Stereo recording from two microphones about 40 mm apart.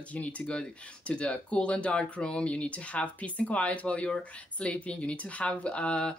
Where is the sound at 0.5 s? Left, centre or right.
Left.